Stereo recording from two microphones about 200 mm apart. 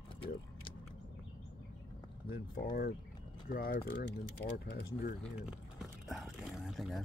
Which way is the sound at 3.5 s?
45° left (ahead or behind).